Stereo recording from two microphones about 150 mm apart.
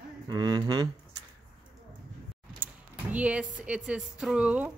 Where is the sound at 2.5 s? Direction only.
10° right (ahead or behind).